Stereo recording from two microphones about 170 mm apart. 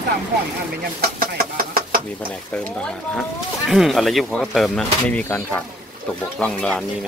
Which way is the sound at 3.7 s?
Centre (ahead or behind).